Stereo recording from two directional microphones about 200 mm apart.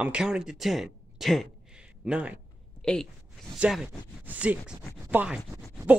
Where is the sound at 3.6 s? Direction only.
5° right (ahead or behind).